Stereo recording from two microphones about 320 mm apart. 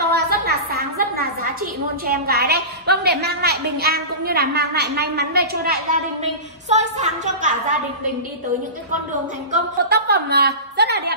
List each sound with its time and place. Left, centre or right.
0.0 s a woman's voice: right
9.5 s a woman's voice: right